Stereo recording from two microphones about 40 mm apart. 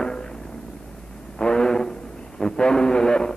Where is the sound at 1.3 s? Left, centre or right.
Centre.